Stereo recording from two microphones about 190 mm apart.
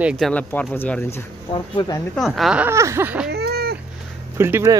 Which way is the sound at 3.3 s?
55° right (ahead or behind).